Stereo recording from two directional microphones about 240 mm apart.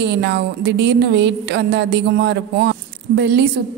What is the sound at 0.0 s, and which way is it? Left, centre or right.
A woman's voice, right.